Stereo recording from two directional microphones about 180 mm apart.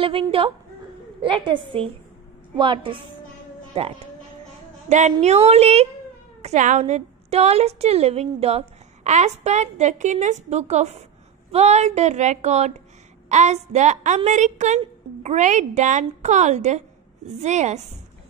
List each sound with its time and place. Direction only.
0.0 s a woman's voice: 30° right (ahead or behind)